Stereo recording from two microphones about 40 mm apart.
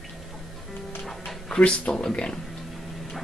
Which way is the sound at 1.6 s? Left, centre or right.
Left.